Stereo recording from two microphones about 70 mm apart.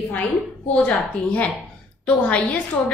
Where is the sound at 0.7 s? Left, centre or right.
Centre.